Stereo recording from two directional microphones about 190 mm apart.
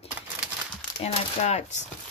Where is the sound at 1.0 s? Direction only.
35° left (ahead or behind).